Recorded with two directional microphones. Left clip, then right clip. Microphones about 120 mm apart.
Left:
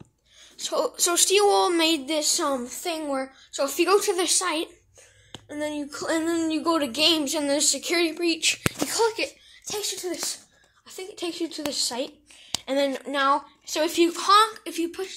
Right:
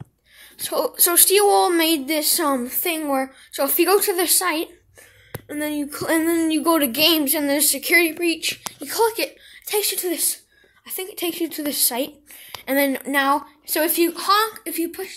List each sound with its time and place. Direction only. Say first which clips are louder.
0.6 s speech: right 2 dB; 25° right (ahead or behind)
2.5 s a woman's voice: right 5 dB; 55° right (ahead or behind)
3.6 s speech: right 3 dB; 25° right (ahead or behind)
5.5 s speech: right 4 dB; 45° right (ahead or behind); by 8.4 s 15° right (ahead or behind)
8.4 s speech: left 3 dB; 5° left (ahead or behind)
9.7 s a woman's voice: right 7 dB; 55° right (ahead or behind)
10.9 s speech: right 5 dB; 35° right (ahead or behind); by 13.9 s 20° right (ahead or behind)
13.9 s speech: left 1 dB; 5° right (ahead or behind)